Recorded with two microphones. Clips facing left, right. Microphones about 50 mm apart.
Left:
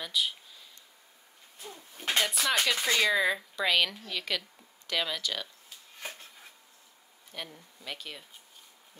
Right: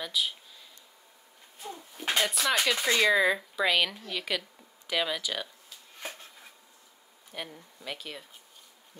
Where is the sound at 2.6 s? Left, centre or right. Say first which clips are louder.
Right 3 dB; centre.